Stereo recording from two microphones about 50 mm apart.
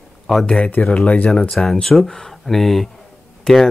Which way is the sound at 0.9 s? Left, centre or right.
Left.